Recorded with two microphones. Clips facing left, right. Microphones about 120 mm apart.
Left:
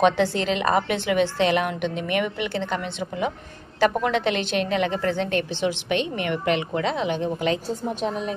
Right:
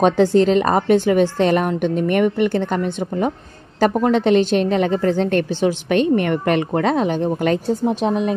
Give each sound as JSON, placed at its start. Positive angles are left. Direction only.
{"t": 0.0, "sound": "a woman's voice", "side_deg": -45}